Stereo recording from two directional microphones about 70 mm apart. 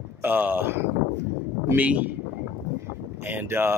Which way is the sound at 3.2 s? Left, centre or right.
Right.